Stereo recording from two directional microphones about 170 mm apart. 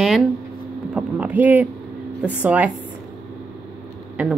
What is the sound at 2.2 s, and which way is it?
Speech, 10° right (ahead or behind).